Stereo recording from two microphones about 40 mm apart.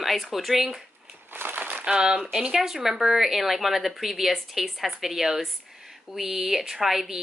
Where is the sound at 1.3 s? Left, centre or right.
Right.